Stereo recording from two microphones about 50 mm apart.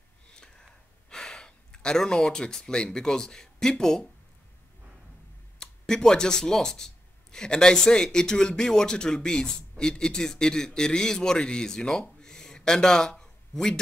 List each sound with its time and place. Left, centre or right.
0.3 s a sound: centre
1.1 s speech: centre
5.6 s speech: centre